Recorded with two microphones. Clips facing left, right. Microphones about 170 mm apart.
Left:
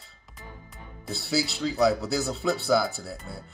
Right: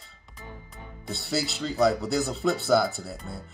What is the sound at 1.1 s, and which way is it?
Speech, centre (ahead or behind).